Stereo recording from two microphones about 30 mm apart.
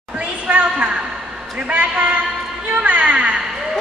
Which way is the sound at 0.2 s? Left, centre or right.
Right.